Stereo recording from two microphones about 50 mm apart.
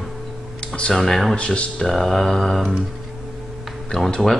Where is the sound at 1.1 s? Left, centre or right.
Centre.